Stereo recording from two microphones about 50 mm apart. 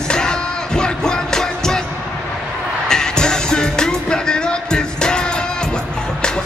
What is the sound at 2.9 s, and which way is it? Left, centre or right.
Music, centre.